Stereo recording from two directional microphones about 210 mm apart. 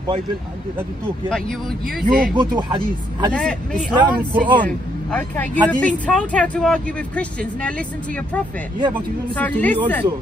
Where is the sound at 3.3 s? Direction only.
5° left (ahead or behind).